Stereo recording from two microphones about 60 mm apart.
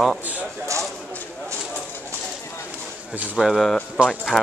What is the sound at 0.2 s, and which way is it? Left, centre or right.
Speech, right.